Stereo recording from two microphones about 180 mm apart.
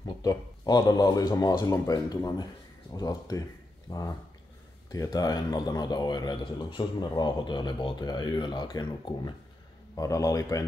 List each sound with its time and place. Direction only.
0.0 s speech: 20° left (ahead or behind)